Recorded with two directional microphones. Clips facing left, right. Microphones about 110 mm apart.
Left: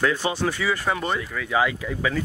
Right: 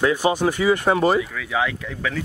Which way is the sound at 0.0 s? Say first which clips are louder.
Right 4 dB; 15° right (ahead or behind).